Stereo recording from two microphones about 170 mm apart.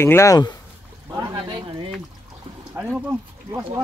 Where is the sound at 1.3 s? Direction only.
25° right (ahead or behind).